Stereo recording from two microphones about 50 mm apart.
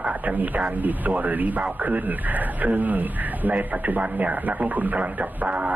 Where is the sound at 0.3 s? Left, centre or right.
Right.